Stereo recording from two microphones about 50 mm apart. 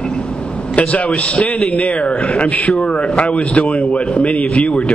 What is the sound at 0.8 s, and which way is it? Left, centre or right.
A man's voice, left.